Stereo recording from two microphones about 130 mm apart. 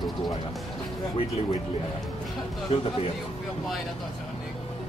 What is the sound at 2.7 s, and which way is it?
Speech, 55° left (ahead or behind).